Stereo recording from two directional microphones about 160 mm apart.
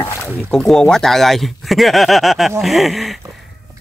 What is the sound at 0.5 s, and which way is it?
Speech, 5° left (ahead or behind).